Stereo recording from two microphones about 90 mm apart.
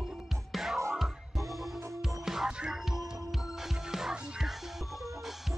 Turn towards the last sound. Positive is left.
turn(degrees=-5)  # may be behind; listen again after turning